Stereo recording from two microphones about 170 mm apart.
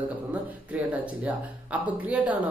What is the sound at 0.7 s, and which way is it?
Speech, 10° right (ahead or behind).